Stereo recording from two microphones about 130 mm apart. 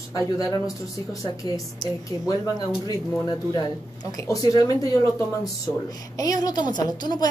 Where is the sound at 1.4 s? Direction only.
30° left (ahead or behind).